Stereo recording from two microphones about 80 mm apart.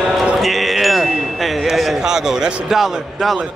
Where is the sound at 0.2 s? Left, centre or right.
Centre.